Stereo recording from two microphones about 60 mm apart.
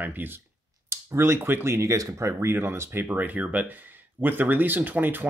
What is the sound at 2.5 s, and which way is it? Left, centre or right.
Speech, right.